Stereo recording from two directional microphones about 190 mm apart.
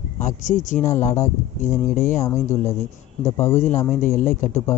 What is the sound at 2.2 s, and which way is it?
Speech, 15° left (ahead or behind).